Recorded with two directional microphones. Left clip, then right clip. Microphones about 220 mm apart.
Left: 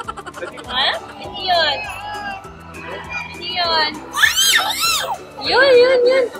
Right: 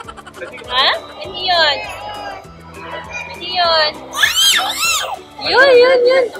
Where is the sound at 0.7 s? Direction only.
20° right (ahead or behind).